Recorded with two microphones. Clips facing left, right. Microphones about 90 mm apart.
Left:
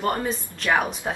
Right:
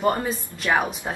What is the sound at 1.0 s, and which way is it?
Speech, centre (ahead or behind).